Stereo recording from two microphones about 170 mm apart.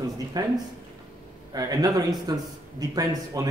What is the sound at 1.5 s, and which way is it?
A man's voice, 20° right (ahead or behind).